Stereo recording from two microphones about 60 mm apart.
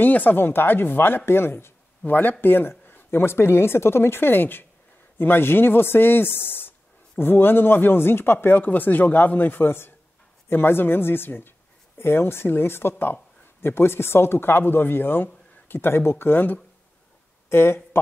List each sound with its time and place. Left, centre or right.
0.0 s speech: left